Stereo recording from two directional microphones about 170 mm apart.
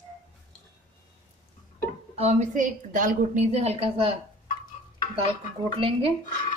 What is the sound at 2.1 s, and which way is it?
A woman's voice, 40° right (ahead or behind).